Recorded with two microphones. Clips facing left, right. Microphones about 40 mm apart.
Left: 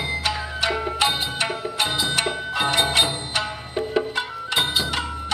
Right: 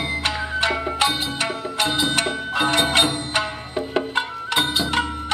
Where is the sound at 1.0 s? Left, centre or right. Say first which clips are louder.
Even; left.